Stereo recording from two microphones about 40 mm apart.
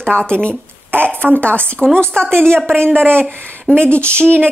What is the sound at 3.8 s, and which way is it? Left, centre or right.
Speech, left.